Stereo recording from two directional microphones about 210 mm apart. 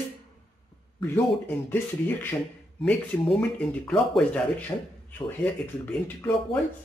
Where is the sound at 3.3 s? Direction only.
5° left (ahead or behind).